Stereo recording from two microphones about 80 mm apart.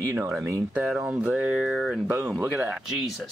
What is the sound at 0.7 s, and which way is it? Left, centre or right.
Speech, centre.